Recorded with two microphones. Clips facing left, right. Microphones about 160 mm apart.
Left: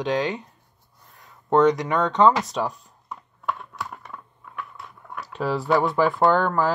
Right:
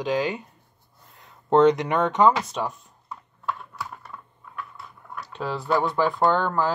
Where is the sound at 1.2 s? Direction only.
20° right (ahead or behind).